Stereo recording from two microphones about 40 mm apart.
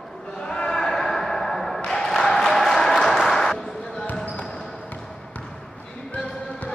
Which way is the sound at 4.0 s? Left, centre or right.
Left.